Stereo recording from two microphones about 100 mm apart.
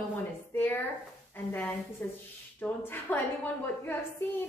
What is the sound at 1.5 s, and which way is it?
A woman's voice, 15° left (ahead or behind).